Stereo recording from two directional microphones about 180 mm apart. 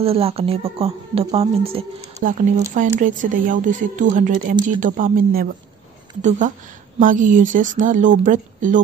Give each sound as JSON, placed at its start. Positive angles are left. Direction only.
{"t": 0.0, "sound": "a woman's voice", "side_deg": -35}
{"t": 3.0, "sound": "speech", "side_deg": -45}